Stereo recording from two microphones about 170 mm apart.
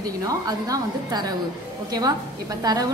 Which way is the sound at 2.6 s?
20° right (ahead or behind).